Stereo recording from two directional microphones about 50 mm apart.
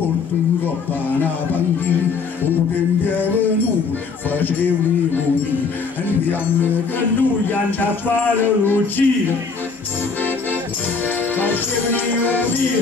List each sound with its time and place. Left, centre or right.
2.4 s music: left
8.4 s a sound: left
11.3 s music: left